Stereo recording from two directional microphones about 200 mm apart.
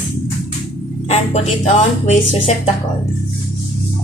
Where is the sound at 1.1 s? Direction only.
35° left (ahead or behind).